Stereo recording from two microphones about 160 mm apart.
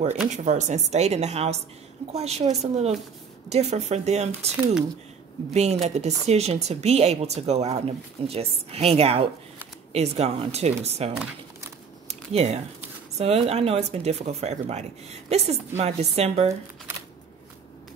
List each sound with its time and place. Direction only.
0.3 s speech: 50° right (ahead or behind)
5.5 s speech: 45° right (ahead or behind)
12.1 s a sound: 40° right (ahead or behind)
13.2 s speech: 40° right (ahead or behind)